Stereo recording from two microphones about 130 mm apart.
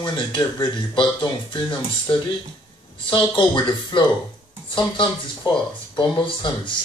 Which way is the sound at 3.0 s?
40° left (ahead or behind).